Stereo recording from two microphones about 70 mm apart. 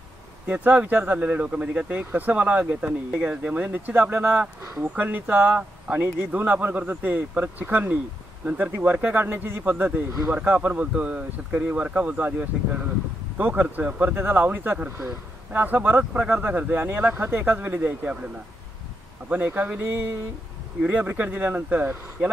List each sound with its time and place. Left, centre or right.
0.5 s speech: right
19.2 s speech: right